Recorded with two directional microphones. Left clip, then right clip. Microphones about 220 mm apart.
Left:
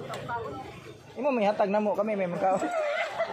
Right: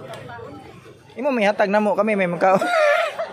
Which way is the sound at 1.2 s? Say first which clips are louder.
Right 6 dB; 25° right (ahead or behind).